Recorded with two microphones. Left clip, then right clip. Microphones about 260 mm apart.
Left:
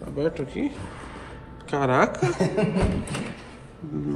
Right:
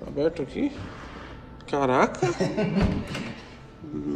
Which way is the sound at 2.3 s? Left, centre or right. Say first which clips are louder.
Left 3 dB; right.